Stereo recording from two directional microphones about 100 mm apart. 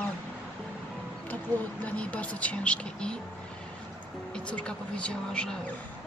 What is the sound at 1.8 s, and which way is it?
Speech, 15° left (ahead or behind).